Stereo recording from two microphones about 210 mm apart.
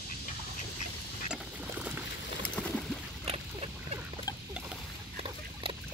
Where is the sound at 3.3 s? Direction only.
30° right (ahead or behind).